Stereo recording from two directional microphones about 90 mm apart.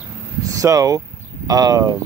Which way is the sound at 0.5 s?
40° right (ahead or behind).